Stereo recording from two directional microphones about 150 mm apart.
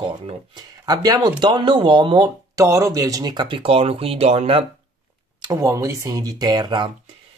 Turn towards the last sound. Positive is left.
turn(degrees=-30)  # may be behind; listen again after turning